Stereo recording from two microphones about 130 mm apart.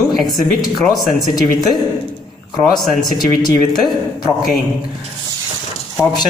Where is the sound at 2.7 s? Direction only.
35° left (ahead or behind).